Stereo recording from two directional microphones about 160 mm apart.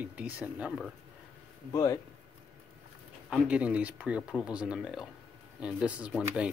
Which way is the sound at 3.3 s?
5° right (ahead or behind).